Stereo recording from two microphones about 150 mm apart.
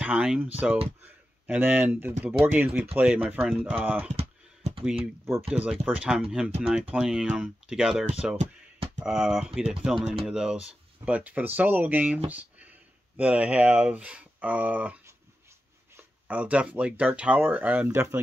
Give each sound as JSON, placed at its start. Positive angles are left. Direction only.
{"t": 0.0, "sound": "speech", "side_deg": -10}
{"t": 4.1, "sound": "computer keyboard", "side_deg": -45}
{"t": 5.5, "sound": "speech", "side_deg": -5}
{"t": 8.4, "sound": "music", "side_deg": -45}
{"t": 9.0, "sound": "speech", "side_deg": -5}
{"t": 16.3, "sound": "speech", "side_deg": -10}